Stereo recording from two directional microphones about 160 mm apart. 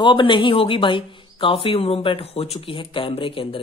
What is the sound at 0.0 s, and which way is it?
Speech, 30° left (ahead or behind).